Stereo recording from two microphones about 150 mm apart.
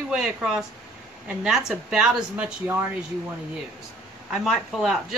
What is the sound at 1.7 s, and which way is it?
Speech, 5° right (ahead or behind).